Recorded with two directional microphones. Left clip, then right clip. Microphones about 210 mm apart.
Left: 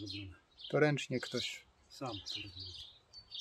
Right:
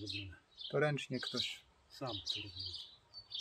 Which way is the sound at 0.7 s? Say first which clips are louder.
Left 4 dB; 55° left (ahead or behind).